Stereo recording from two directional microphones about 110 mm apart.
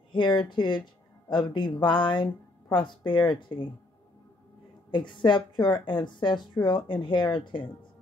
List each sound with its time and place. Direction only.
0.1 s speech: 45° left (ahead or behind)
4.9 s speech: 45° left (ahead or behind)